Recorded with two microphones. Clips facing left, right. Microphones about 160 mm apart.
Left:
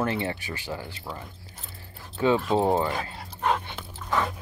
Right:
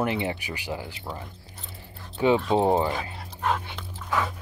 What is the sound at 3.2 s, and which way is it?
Dog, centre (ahead or behind).